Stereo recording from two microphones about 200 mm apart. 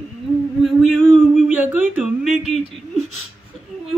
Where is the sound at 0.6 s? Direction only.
Centre (ahead or behind).